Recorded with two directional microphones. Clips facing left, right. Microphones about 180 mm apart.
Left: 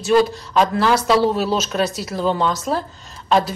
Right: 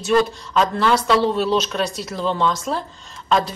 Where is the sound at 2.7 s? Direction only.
40° left (ahead or behind).